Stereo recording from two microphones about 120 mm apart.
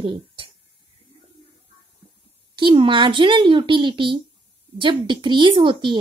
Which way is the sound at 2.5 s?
45° right (ahead or behind).